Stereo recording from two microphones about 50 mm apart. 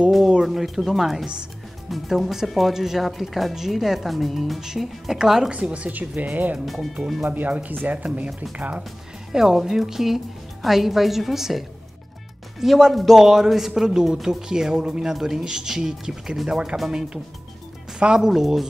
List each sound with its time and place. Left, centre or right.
0.3 s speech: centre
5.6 s speech: right
6.6 s speech: centre
7.2 s speech: right
9.3 s speech: centre
17.9 s speech: centre